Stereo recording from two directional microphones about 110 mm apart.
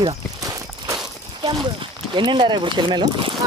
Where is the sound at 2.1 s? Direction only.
45° right (ahead or behind).